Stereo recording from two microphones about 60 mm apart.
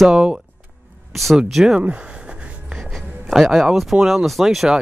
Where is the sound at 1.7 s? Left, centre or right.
Centre.